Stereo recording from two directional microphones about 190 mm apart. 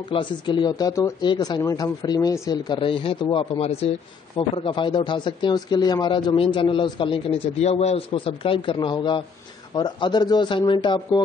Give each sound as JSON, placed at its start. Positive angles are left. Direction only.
{"t": 0.1, "sound": "a man's voice", "side_deg": 25}